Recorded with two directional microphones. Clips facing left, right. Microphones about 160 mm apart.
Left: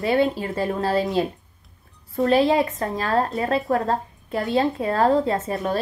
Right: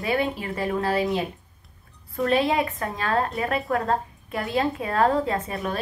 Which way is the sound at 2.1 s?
30° left (ahead or behind).